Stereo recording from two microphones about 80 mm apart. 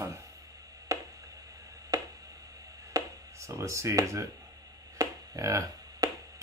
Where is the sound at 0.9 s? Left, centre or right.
Right.